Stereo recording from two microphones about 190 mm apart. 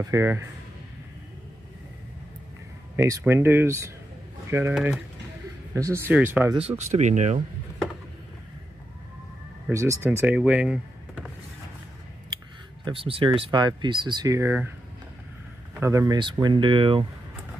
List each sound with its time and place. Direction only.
0.0 s speech: 15° right (ahead or behind)
3.0 s speech: 15° right (ahead or behind)
5.8 s speech: 15° right (ahead or behind)
6.8 s speech: 40° right (ahead or behind)
9.7 s speech: 15° right (ahead or behind)
12.8 s speech: 30° right (ahead or behind); by 14.7 s 10° right (ahead or behind)
15.7 s speech: 15° right (ahead or behind)